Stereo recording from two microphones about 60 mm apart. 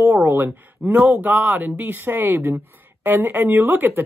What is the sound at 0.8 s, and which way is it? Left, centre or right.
Speech, right.